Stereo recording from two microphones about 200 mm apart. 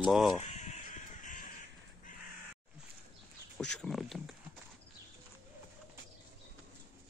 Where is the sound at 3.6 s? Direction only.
Centre (ahead or behind).